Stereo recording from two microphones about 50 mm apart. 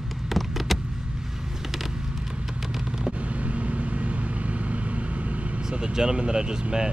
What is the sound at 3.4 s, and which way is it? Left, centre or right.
Vehicle, right.